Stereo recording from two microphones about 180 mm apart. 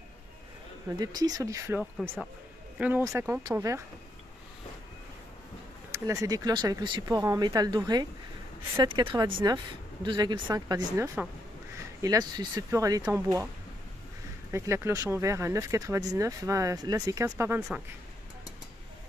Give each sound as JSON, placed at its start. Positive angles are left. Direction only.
{"t": 0.8, "sound": "speech", "side_deg": -20}
{"t": 2.0, "sound": "speech", "side_deg": -5}
{"t": 2.8, "sound": "speech", "side_deg": -15}
{"t": 5.9, "sound": "speech", "side_deg": -15}
{"t": 14.5, "sound": "speech", "side_deg": -15}